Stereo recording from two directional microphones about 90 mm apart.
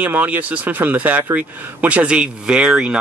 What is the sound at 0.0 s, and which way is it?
Speech, 20° right (ahead or behind).